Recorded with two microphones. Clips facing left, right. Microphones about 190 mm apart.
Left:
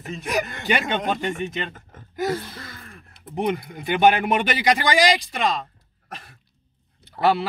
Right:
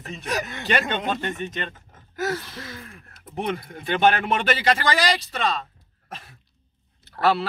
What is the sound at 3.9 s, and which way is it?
A man's voice, 15° left (ahead or behind).